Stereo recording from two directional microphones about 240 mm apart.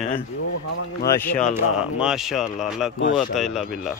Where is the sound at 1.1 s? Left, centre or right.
Centre.